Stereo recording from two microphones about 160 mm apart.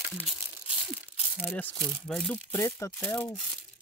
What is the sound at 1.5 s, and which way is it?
Speech, 10° left (ahead or behind).